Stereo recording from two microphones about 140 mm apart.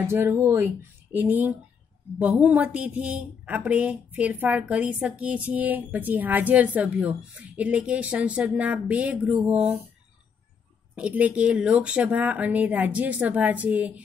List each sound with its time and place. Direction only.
0.0 s a woman's voice: 15° right (ahead or behind)
9.2 s a sound: 5° right (ahead or behind)
11.0 s a woman's voice: 10° right (ahead or behind)